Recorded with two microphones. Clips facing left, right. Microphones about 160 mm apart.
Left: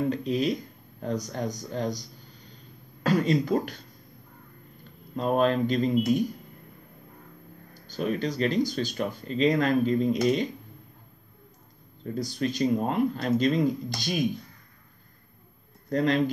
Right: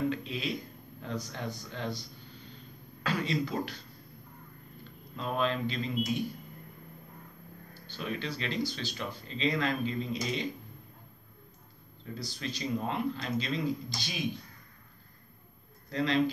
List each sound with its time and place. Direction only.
0.1 s speech: 40° left (ahead or behind)
5.1 s speech: 45° left (ahead or behind)
7.7 s speech: 45° left (ahead or behind)
12.0 s speech: 50° left (ahead or behind)
15.9 s speech: 45° left (ahead or behind)